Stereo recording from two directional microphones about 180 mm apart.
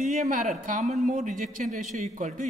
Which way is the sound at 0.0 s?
40° right (ahead or behind).